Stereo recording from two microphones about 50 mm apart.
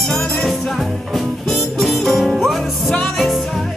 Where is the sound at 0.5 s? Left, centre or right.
Centre.